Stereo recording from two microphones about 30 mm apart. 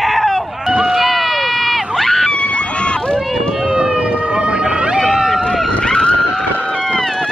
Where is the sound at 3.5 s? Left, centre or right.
Right.